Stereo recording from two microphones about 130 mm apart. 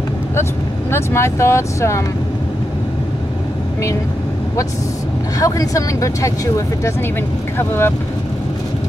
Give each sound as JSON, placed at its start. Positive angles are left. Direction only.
{"t": 0.9, "sound": "speech", "side_deg": 20}
{"t": 5.4, "sound": "speech", "side_deg": 25}